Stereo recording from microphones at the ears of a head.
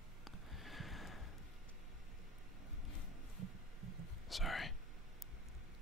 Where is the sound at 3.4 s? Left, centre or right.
Right.